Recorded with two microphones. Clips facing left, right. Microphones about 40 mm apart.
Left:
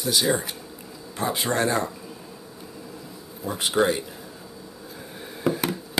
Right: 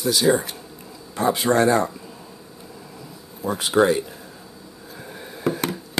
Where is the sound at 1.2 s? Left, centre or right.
Right.